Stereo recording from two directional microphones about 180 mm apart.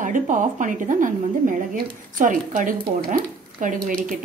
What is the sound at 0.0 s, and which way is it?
A woman's voice, 45° right (ahead or behind).